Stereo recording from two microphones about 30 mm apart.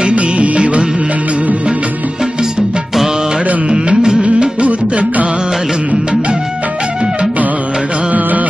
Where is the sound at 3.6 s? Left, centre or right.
Right.